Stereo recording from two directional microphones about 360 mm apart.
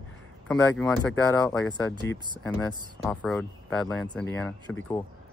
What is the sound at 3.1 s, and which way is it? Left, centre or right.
Speech, centre.